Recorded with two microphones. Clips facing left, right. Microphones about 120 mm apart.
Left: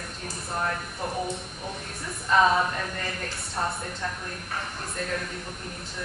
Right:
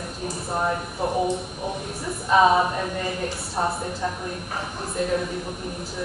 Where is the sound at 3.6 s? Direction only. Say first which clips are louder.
Right 5 dB; 25° right (ahead or behind).